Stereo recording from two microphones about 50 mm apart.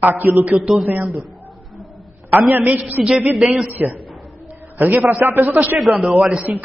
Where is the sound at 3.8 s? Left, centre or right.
Right.